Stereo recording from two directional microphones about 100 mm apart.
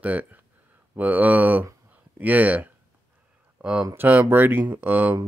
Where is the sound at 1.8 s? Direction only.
15° right (ahead or behind).